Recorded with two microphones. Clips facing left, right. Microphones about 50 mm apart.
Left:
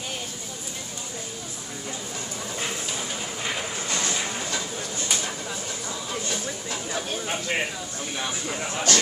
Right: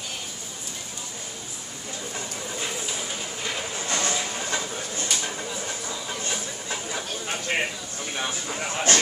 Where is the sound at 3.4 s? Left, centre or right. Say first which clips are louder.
Left 1 dB; centre.